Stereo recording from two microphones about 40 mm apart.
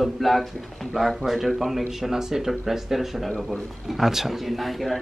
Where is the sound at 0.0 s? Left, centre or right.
Centre.